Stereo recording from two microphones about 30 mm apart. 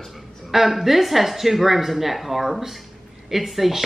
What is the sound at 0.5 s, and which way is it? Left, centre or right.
A woman's voice, centre.